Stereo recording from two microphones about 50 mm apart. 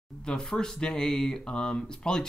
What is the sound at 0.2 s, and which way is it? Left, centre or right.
Speech, centre.